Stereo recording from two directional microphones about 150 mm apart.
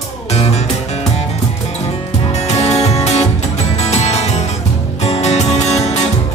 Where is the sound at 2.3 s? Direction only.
45° left (ahead or behind).